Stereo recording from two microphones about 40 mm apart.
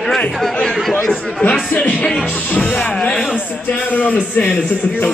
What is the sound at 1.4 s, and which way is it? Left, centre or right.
Speech, left.